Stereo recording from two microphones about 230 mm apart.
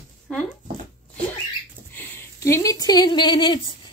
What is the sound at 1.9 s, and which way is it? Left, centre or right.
A woman's voice, centre.